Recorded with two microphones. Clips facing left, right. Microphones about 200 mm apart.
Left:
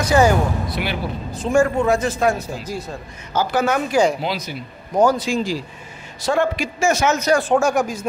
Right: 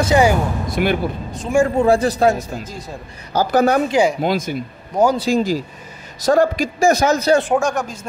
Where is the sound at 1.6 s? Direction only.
30° right (ahead or behind).